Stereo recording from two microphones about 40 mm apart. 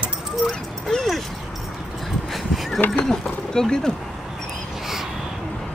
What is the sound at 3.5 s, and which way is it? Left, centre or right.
Speech, centre.